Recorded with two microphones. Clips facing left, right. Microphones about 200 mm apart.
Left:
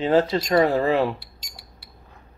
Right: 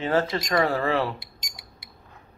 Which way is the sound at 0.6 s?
20° left (ahead or behind).